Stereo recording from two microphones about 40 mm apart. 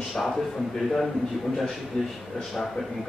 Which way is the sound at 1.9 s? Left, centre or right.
Centre.